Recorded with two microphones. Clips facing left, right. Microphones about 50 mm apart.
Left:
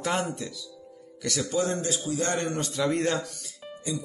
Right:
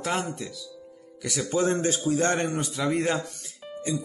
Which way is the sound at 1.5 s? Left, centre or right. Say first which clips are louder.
Right 5 dB; right.